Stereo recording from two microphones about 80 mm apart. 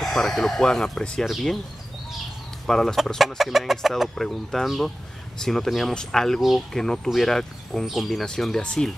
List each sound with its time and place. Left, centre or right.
0.0 s speech: centre
2.6 s speech: centre